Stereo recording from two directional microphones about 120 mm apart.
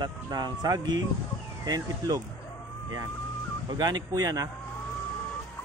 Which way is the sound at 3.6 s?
35° right (ahead or behind).